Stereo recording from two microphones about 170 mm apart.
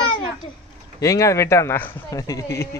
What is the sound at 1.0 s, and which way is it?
A man's voice, 20° left (ahead or behind).